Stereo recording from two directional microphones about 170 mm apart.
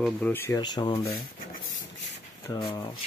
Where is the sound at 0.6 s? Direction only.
25° left (ahead or behind).